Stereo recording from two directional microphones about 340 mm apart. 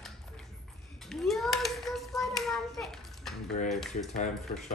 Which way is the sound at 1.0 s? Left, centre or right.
Centre.